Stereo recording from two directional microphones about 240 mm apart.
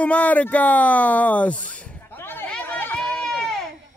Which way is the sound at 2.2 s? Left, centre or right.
Centre.